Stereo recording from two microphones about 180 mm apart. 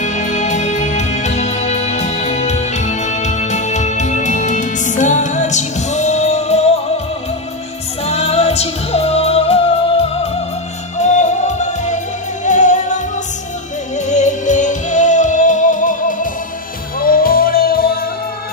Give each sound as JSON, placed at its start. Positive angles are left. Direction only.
{"t": 0.0, "sound": "music", "side_deg": 45}
{"t": 8.0, "sound": "music", "side_deg": 35}